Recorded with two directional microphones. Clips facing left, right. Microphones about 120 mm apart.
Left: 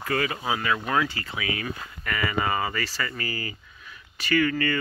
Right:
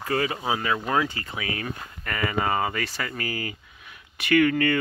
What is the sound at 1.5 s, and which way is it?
Speech, 40° right (ahead or behind).